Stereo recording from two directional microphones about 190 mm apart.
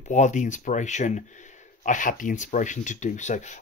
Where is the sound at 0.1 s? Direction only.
40° left (ahead or behind).